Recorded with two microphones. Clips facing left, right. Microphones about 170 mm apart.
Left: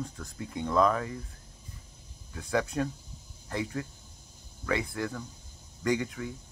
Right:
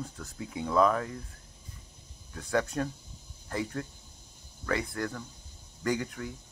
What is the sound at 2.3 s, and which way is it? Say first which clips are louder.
Speech: even; centre (ahead or behind).